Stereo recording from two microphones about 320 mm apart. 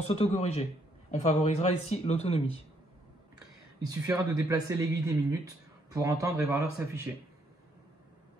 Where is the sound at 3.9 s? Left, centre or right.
Centre.